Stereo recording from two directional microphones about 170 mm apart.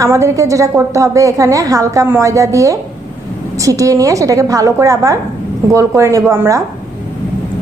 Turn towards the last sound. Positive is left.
turn(degrees=-15)  # may be behind; listen again after turning